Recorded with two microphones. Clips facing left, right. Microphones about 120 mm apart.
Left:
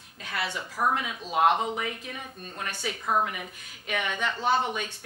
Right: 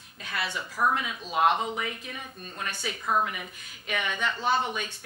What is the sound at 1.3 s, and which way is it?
A woman's voice, 50° left (ahead or behind).